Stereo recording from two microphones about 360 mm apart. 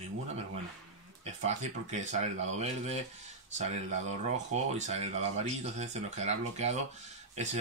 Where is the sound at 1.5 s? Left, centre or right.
Centre.